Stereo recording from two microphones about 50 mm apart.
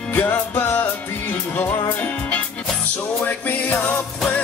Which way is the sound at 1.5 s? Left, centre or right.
Left.